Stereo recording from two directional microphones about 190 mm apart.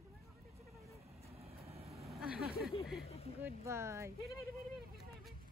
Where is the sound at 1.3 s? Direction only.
30° right (ahead or behind).